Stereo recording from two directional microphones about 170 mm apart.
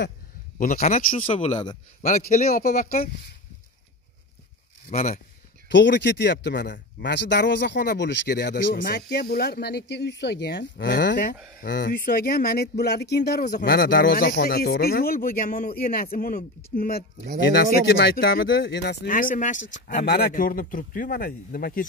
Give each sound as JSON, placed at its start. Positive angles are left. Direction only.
{"t": 0.6, "sound": "a man's voice", "side_deg": 50}
{"t": 1.3, "sound": "speech", "side_deg": 35}
{"t": 2.0, "sound": "a man's voice", "side_deg": 50}
{"t": 4.9, "sound": "a man's voice", "side_deg": 45}
{"t": 5.7, "sound": "speech", "side_deg": 90}
{"t": 17.5, "sound": "speech", "side_deg": 80}
{"t": 19.0, "sound": "a man's voice", "side_deg": 50}
{"t": 20.0, "sound": "speech", "side_deg": 65}